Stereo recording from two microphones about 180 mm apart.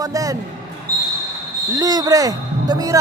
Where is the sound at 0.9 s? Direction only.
60° right (ahead or behind).